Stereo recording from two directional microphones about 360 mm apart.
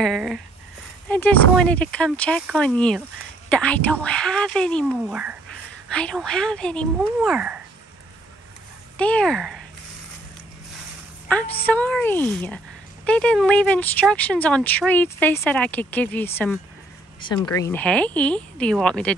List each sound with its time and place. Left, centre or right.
0.0 s speech: centre
8.9 s speech: centre
11.2 s a woman's voice: centre